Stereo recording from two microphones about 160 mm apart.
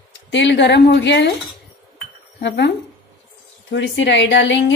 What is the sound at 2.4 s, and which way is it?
Speech, 90° left.